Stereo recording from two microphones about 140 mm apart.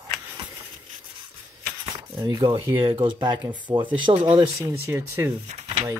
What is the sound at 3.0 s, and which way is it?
Speech, 35° right (ahead or behind).